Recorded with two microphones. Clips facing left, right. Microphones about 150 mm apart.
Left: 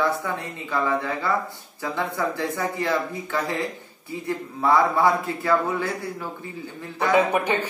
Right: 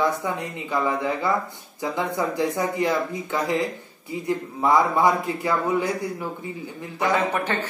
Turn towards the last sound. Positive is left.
turn(degrees=15)  # may be behind; listen again after turning